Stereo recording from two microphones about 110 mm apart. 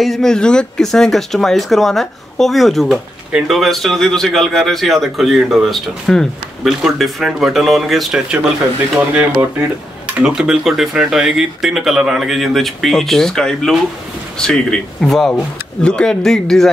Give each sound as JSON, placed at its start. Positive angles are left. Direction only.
{"t": 0.0, "sound": "speech", "side_deg": 5}
{"t": 9.4, "sound": "speech", "side_deg": -20}
{"t": 10.1, "sound": "a man's voice", "side_deg": -5}